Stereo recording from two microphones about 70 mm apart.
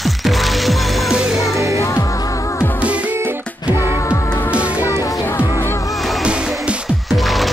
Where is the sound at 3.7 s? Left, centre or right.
Left.